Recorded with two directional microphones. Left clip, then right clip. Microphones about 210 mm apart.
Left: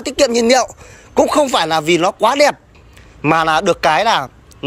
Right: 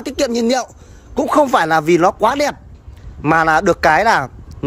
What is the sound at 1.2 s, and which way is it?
Speech, 15° right (ahead or behind).